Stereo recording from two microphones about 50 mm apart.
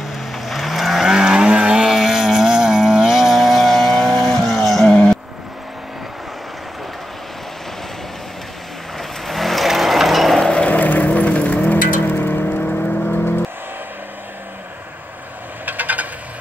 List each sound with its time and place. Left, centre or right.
0.0 s vehicle: centre
1.0 s vehicle: centre
1.9 s vehicle: centre
4.8 s vehicle: centre
8.9 s vehicle: centre
10.7 s vehicle: left
12.0 s car: left
15.6 s vehicle: right